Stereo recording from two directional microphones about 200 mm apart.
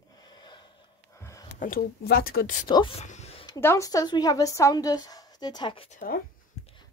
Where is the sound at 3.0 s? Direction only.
35° left (ahead or behind).